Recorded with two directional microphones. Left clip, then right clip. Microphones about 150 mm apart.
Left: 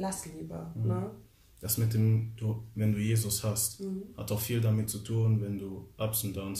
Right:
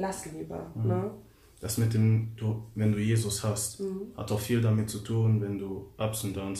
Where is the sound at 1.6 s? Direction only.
30° left (ahead or behind).